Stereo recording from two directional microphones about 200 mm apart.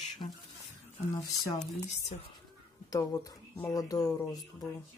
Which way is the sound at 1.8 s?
35° left (ahead or behind).